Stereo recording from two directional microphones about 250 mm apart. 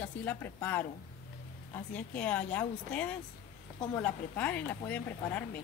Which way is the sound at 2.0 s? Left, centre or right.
Centre.